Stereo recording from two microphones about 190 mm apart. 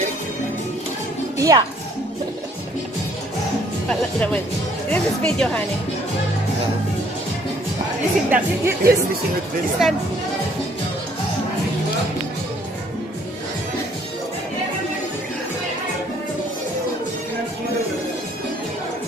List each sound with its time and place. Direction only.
1.4 s speech: 20° right (ahead or behind)
3.9 s speech: 5° left (ahead or behind)
8.3 s speech: 15° right (ahead or behind)
9.8 s speech: centre (ahead or behind)